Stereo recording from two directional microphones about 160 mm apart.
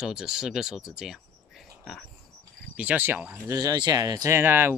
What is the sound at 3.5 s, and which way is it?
Speech, 25° right (ahead or behind).